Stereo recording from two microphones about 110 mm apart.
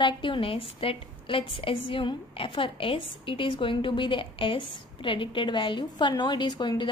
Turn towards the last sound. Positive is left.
turn(degrees=45)  # may be behind; listen again after turning